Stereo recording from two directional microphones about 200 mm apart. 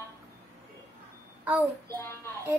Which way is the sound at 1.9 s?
15° left (ahead or behind).